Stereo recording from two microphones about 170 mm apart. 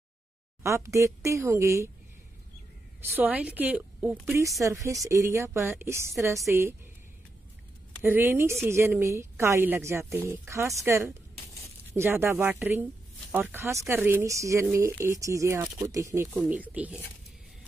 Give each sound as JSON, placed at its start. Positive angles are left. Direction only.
{"t": 0.7, "sound": "a woman's voice", "side_deg": -15}
{"t": 3.0, "sound": "a woman's voice", "side_deg": -10}
{"t": 8.0, "sound": "a woman's voice", "side_deg": -15}